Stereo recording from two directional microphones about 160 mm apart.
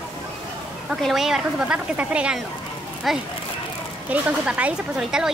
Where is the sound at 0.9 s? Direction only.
Centre (ahead or behind).